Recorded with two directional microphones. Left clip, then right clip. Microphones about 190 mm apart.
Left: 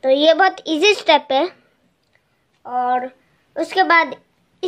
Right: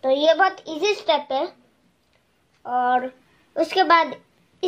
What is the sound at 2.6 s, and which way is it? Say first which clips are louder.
A woman's voice: left 1 dB; 10° left (ahead or behind).